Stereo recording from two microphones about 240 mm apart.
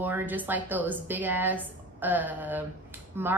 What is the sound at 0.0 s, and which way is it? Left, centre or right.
Speech, centre.